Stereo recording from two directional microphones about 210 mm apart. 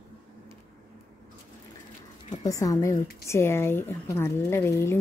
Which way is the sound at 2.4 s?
15° left (ahead or behind).